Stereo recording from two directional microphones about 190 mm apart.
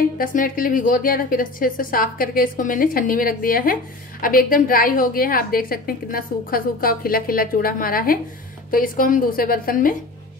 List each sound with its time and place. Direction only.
0.2 s a woman's voice: 45° left (ahead or behind)